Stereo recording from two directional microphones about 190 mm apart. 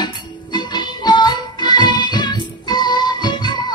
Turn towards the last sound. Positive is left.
turn(degrees=20)  # may be behind; listen again after turning